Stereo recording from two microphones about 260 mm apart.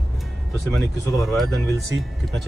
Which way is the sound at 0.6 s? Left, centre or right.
Centre.